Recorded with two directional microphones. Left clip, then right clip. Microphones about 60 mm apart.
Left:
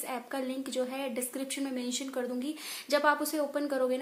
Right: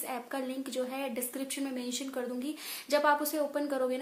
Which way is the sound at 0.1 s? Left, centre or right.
Left.